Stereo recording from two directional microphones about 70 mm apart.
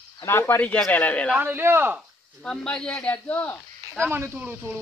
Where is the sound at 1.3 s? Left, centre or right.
Right.